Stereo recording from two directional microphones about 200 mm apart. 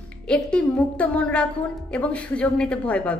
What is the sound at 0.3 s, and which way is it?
A woman's voice, 5° left (ahead or behind).